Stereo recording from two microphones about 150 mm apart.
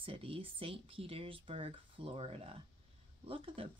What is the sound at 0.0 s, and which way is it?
Speech, 40° right (ahead or behind).